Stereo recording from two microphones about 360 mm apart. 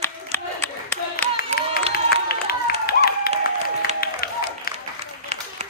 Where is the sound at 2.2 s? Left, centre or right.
Left.